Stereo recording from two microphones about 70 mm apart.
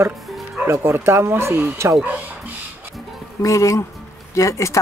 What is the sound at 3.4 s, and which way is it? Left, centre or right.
Speech, left.